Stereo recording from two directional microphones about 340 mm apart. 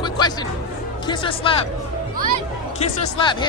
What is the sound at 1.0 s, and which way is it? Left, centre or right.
Speech, centre.